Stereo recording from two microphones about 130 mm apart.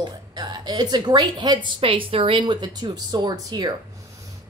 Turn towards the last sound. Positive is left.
turn(degrees=-30)  # may be behind; listen again after turning